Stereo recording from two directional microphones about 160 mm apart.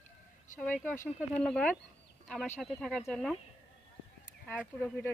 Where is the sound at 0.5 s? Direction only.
50° left (ahead or behind).